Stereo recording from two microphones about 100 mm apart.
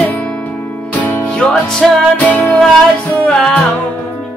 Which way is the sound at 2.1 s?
15° left (ahead or behind).